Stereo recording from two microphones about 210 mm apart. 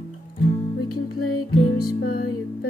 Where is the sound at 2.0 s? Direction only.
45° left (ahead or behind).